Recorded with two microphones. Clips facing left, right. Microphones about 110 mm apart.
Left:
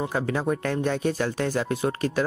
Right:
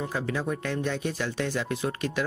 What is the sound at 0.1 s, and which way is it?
Speech, 45° left (ahead or behind).